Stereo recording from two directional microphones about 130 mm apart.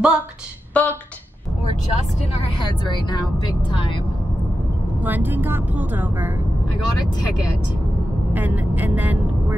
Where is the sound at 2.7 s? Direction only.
35° left (ahead or behind).